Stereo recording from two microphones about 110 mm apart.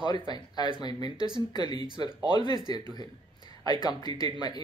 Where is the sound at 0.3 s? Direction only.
45° left (ahead or behind).